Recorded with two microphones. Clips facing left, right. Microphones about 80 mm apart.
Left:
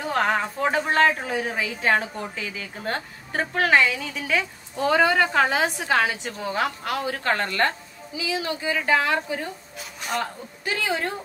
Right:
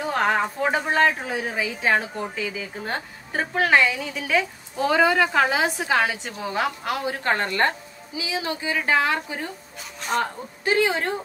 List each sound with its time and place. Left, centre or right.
0.1 s a woman's voice: centre
7.1 s a woman's voice: right
10.1 s a woman's voice: right